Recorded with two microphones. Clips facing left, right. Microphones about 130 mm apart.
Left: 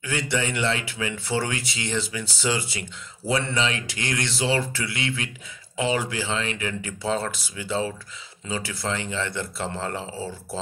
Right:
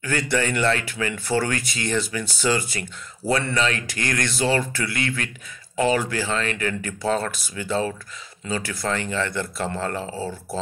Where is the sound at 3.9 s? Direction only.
55° right (ahead or behind).